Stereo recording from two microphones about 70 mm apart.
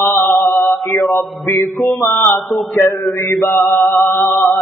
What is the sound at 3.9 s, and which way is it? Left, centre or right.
Music, left.